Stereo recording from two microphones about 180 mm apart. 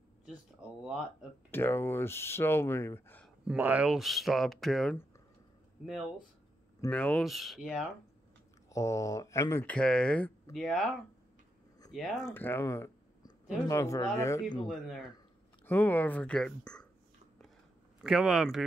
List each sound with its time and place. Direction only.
1.5 s speech: 10° left (ahead or behind)
3.4 s speech: 10° right (ahead or behind)
6.8 s speech: 5° left (ahead or behind)
8.6 s speech: 15° left (ahead or behind); by 10.9 s centre (ahead or behind)
11.9 s speech: centre (ahead or behind); by 14.7 s 20° left (ahead or behind)
14.7 s speech: centre (ahead or behind)
15.6 s speech: 10° left (ahead or behind)
18.0 s speech: 5° right (ahead or behind)